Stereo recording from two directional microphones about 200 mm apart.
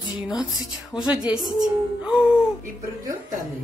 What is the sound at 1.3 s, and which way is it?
Music, 20° right (ahead or behind).